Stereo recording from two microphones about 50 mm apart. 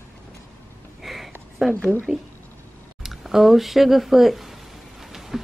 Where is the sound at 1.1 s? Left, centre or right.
Centre.